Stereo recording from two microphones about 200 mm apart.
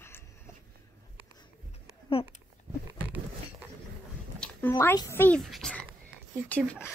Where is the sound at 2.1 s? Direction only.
25° left (ahead or behind).